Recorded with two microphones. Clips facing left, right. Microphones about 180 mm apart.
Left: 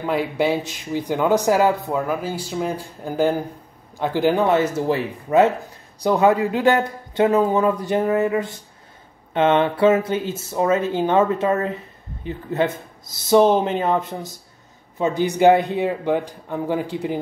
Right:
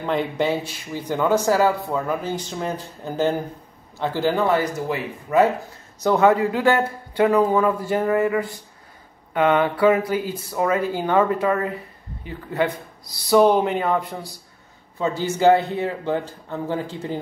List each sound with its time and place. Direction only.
0.0 s speech: 5° left (ahead or behind); by 5.5 s 30° left (ahead or behind)
6.0 s speech: 15° left (ahead or behind)